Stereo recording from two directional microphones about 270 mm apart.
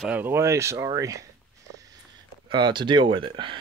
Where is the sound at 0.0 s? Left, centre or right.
Centre.